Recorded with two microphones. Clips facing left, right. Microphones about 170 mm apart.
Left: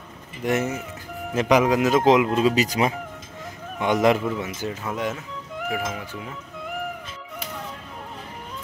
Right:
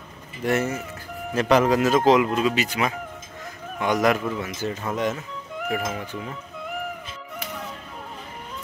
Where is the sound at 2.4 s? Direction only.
35° left (ahead or behind).